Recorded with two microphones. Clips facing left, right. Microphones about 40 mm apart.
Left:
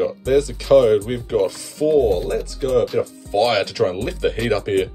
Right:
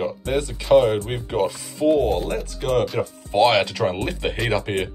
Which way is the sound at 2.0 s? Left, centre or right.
Right.